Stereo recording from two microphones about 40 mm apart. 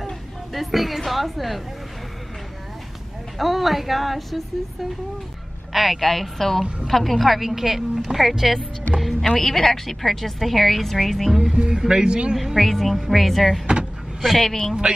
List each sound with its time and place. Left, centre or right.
0.5 s a woman's voice: centre
3.3 s a woman's voice: centre
5.7 s a woman's voice: centre
9.4 s a woman's voice: centre
11.3 s a man's voice: centre
12.5 s a woman's voice: centre